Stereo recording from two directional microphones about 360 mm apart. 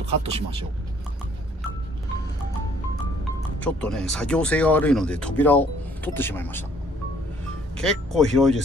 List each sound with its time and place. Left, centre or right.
0.0 s speech: centre
3.6 s speech: centre
7.7 s speech: centre